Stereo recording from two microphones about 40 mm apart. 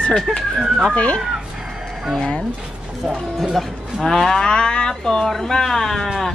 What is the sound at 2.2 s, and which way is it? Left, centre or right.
Speech, centre.